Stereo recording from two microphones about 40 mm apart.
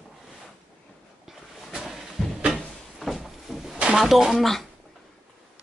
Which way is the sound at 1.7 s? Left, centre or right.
Centre.